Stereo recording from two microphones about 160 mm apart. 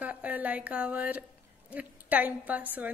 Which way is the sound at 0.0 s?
10° right (ahead or behind).